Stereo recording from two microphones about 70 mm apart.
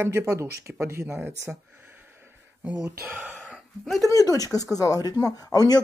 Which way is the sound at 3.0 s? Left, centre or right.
Right.